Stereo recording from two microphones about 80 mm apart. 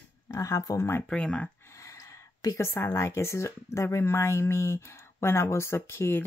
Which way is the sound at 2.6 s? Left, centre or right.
Left.